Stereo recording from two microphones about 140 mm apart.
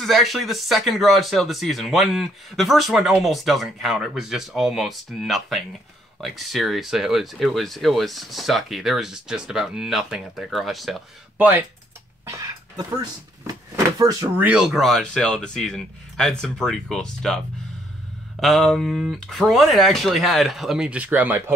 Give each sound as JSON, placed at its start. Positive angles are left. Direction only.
{"t": 0.0, "sound": "speech", "side_deg": 0}
{"t": 11.3, "sound": "speech", "side_deg": -10}
{"t": 12.3, "sound": "a sound", "side_deg": -25}
{"t": 13.9, "sound": "speech", "side_deg": -25}
{"t": 14.4, "sound": "speech", "side_deg": -5}
{"t": 18.4, "sound": "speech", "side_deg": 0}